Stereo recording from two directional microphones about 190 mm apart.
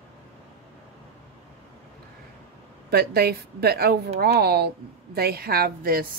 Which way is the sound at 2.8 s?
55° right (ahead or behind).